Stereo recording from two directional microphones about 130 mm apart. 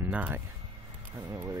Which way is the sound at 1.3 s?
25° right (ahead or behind).